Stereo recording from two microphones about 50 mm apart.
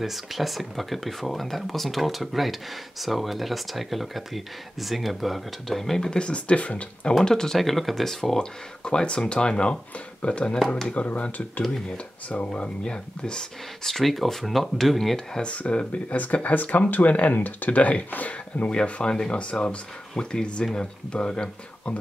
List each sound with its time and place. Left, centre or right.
0.0 s speech: centre; by 7.2 s left
7.2 s speech: centre
8.8 s speech: centre
15.4 s speech: left
18.7 s speech: left